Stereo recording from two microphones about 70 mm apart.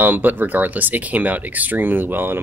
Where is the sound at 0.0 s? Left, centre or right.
Right.